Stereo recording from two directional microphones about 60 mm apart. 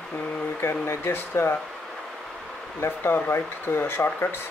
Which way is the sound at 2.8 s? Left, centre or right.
Left.